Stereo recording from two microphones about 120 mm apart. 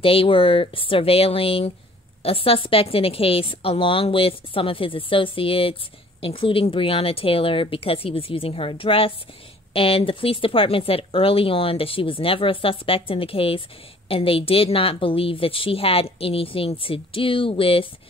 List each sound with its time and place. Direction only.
0.0 s speech: 50° left (ahead or behind)